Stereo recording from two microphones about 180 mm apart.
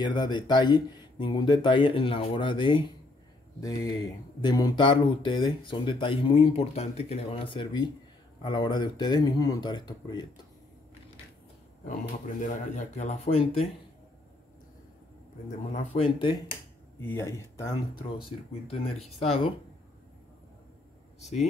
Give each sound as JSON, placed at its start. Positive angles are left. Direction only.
{"t": 0.0, "sound": "speech", "side_deg": 25}
{"t": 12.4, "sound": "speech", "side_deg": 40}
{"t": 15.7, "sound": "speech", "side_deg": 30}
{"t": 17.0, "sound": "speech", "side_deg": 15}